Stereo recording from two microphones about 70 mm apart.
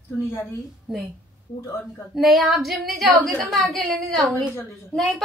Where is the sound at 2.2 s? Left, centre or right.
Centre.